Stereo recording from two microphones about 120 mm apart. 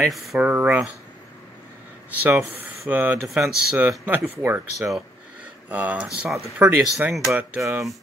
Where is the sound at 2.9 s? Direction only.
15° right (ahead or behind).